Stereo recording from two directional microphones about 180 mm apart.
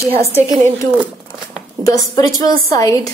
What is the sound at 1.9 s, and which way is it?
A woman's voice, 20° left (ahead or behind).